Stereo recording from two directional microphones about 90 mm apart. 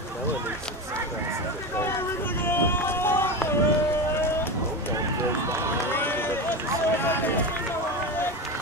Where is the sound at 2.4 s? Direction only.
25° left (ahead or behind).